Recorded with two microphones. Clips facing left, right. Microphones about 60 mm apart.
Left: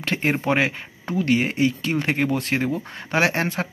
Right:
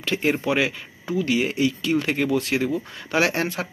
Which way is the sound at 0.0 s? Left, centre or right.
Left.